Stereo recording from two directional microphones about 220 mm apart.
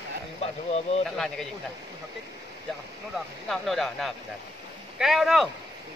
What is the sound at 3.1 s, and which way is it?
Speech, centre (ahead or behind).